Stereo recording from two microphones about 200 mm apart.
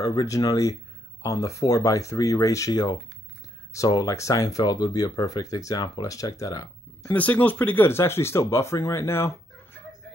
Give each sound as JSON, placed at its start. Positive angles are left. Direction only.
{"t": 0.0, "sound": "speech", "side_deg": 15}